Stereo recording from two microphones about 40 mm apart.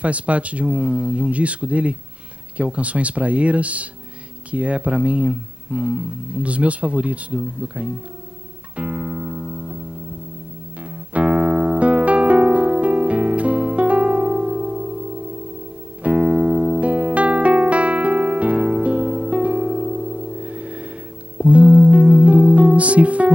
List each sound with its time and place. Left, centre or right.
0.0 s speech: right
8.7 s music: right
11.1 s music: right
16.0 s music: right